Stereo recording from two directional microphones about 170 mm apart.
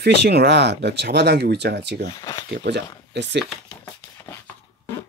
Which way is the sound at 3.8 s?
15° left (ahead or behind).